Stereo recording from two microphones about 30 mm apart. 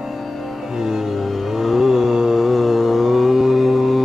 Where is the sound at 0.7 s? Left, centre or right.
Centre.